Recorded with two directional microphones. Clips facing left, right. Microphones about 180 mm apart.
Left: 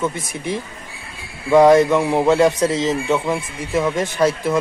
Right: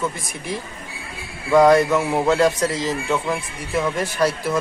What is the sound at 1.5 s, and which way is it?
A man's voice, 20° left (ahead or behind).